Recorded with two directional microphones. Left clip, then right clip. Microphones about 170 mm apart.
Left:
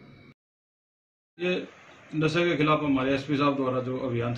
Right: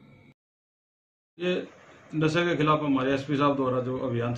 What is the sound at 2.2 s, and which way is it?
A man's voice, 5° right (ahead or behind).